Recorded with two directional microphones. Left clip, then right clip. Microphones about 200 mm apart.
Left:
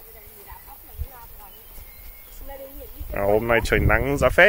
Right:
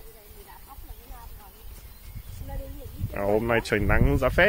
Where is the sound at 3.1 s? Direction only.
10° left (ahead or behind).